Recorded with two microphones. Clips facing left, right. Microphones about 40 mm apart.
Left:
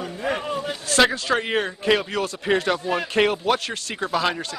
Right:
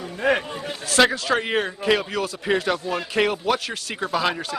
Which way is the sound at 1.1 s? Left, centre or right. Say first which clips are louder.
Even; centre.